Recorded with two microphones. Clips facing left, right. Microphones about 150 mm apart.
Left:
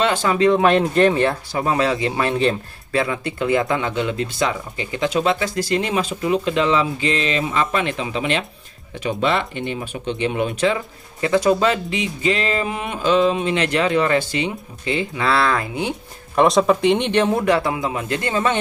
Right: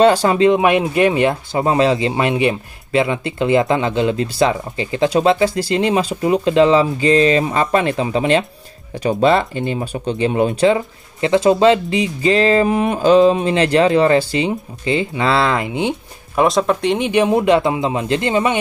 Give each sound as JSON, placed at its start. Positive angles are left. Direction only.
{"t": 0.0, "sound": "speech", "side_deg": -35}
{"t": 0.5, "sound": "speech", "side_deg": -15}
{"t": 16.3, "sound": "speech", "side_deg": 0}
{"t": 17.1, "sound": "speech", "side_deg": -15}